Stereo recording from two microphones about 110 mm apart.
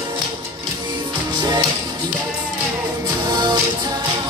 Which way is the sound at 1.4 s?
40° right (ahead or behind).